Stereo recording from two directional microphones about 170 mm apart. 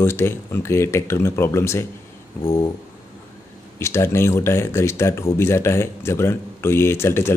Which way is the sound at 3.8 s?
15° left (ahead or behind).